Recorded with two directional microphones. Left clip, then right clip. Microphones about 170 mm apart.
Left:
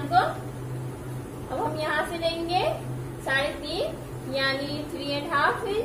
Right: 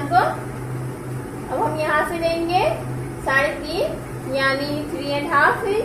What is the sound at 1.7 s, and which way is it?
A woman's voice, 10° right (ahead or behind).